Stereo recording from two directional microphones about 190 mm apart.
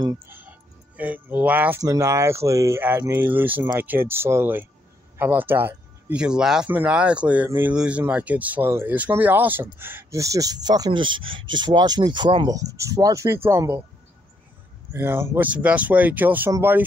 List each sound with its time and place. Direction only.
0.3 s speech: 10° right (ahead or behind)
14.9 s speech: 10° right (ahead or behind)